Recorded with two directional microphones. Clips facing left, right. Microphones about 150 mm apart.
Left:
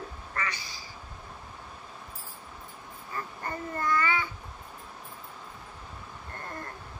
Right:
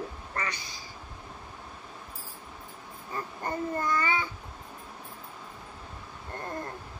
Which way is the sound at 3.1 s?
20° right (ahead or behind).